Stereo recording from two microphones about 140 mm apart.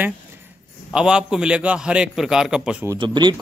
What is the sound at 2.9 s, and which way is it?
Speech, 35° right (ahead or behind).